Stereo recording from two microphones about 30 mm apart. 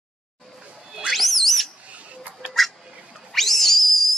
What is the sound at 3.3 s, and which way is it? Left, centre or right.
Whistle, centre.